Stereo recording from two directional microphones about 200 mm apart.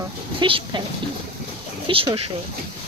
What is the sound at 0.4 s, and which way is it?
Speech, 25° right (ahead or behind).